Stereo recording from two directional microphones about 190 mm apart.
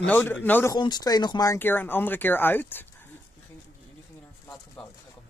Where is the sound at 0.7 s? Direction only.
20° left (ahead or behind).